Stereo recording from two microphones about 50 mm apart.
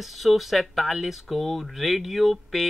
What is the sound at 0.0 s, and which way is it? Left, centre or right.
Speech, centre.